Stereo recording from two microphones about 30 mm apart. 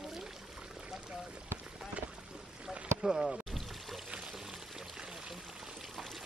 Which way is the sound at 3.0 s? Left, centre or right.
Centre.